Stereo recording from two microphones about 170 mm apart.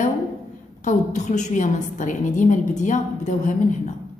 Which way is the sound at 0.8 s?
45° left (ahead or behind).